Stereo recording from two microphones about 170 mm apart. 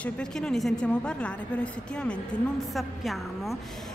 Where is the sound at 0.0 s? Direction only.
5° left (ahead or behind).